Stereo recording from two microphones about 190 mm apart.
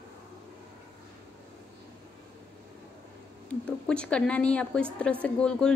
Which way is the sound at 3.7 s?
5° left (ahead or behind).